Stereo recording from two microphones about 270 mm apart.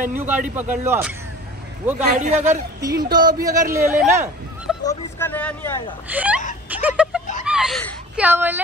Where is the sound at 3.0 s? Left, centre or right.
Centre.